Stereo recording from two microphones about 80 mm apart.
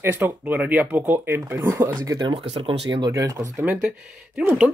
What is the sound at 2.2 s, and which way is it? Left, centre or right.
Speech, right.